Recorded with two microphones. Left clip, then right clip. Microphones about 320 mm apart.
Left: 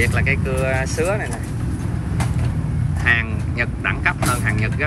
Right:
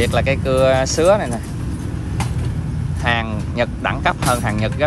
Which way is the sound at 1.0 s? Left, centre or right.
Right.